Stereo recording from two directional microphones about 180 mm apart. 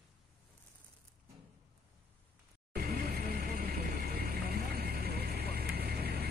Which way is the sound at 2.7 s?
60° right (ahead or behind).